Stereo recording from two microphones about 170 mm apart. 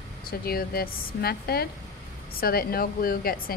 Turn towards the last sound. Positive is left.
turn(degrees=60)  # may be behind; listen again after turning